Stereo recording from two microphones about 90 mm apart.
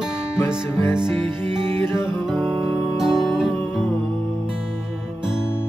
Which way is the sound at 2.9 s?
Centre (ahead or behind).